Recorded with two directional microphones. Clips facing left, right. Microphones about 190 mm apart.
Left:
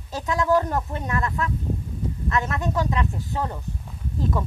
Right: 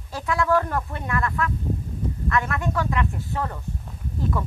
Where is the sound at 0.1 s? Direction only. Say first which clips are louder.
Left 1 dB; 20° left (ahead or behind).